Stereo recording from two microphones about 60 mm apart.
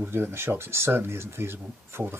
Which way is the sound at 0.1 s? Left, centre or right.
Right.